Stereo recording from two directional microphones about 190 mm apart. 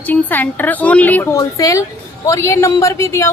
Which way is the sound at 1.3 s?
20° left (ahead or behind).